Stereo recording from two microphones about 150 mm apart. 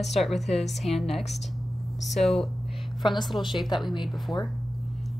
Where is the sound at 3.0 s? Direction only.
30° left (ahead or behind).